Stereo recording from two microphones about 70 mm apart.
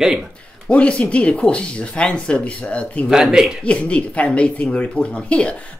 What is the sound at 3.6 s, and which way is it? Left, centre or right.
Speech, centre.